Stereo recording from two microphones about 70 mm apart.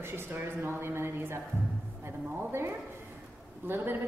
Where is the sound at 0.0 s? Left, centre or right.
Right.